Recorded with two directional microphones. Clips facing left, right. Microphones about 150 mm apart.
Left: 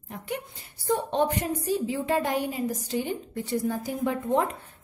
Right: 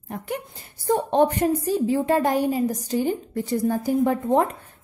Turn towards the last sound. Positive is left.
turn(degrees=-45)  # may be behind; listen again after turning